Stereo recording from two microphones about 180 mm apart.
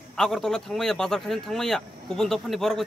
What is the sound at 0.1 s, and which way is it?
Speech, centre (ahead or behind).